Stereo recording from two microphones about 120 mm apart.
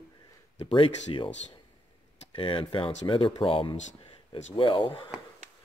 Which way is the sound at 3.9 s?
75° left (ahead or behind).